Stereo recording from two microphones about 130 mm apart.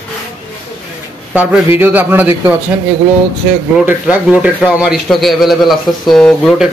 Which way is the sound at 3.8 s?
10° right (ahead or behind).